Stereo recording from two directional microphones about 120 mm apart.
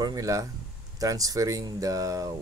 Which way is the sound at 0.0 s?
30° right (ahead or behind).